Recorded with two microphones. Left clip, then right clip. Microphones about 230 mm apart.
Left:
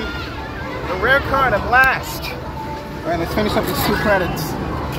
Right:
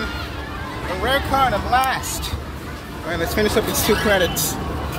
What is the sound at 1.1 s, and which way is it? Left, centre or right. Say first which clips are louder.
Speech: left 3 dB; centre.